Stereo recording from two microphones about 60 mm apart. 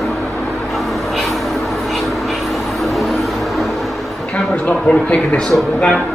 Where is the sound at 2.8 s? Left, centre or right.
Centre.